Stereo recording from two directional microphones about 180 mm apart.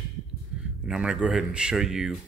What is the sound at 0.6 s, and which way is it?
Speech, 5° right (ahead or behind).